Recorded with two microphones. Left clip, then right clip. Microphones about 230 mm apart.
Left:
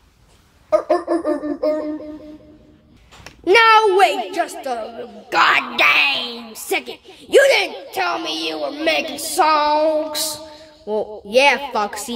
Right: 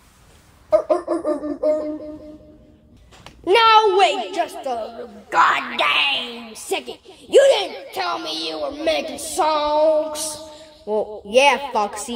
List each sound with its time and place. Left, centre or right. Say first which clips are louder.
0.7 s a sound: left 1 dB; left
3.4 s a woman's voice: left 2 dB; left
10.3 s music: left 2 dB; centre
11.2 s a woman's voice: left 1 dB; left